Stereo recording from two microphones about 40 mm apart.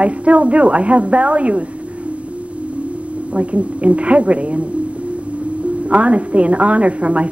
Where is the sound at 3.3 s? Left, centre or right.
Right.